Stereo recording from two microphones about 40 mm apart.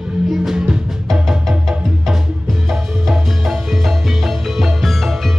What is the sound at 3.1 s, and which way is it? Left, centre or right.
Music, centre.